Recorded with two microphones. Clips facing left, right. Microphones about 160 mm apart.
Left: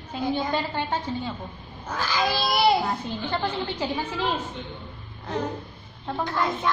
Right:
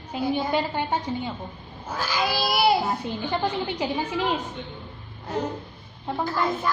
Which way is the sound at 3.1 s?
15° right (ahead or behind).